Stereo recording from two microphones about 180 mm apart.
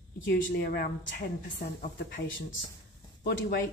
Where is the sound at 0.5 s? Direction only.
55° left (ahead or behind).